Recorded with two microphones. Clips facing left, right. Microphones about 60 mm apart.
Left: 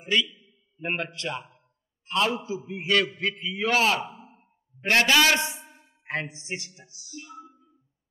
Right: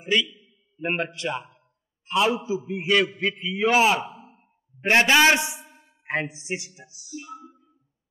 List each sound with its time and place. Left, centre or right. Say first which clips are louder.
0.0 s a man's voice: right 2 dB; centre
4.2 s a sound: right 1 dB; centre
5.8 s a woman's voice: right 4 dB; centre